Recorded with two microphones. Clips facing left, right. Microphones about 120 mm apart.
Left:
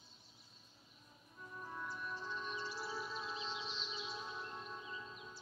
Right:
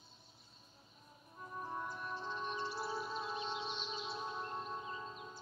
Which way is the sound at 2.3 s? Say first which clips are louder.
Right 4 dB; 55° right (ahead or behind).